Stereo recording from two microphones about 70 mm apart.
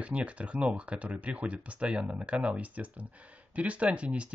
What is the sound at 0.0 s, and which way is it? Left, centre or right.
Speech, centre.